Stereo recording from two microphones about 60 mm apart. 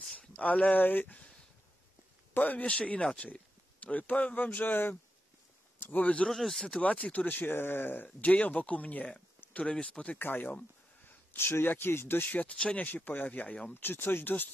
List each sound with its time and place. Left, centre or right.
0.4 s speech: left
2.3 s speech: left
6.2 s speech: centre
6.8 s speech: left
10.1 s speech: left